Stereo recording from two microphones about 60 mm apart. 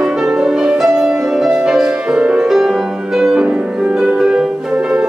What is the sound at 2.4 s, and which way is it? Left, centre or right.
Music, centre.